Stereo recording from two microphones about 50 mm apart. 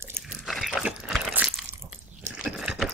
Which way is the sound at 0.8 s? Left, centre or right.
Centre.